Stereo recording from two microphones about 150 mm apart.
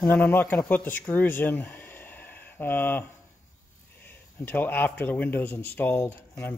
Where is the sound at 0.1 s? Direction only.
15° left (ahead or behind).